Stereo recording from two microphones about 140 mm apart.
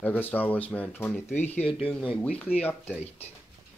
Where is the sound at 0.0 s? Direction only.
10° left (ahead or behind).